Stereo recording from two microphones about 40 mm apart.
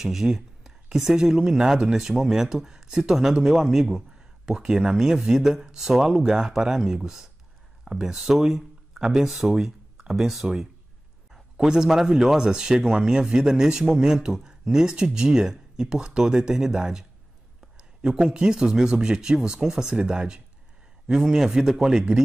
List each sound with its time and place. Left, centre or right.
0.0 s a sound: centre
1.1 s speech: centre
11.5 s speech: centre